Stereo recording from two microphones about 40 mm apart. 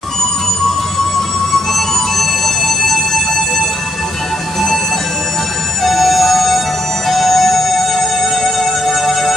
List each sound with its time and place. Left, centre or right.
1.7 s music: centre
5.9 s music: centre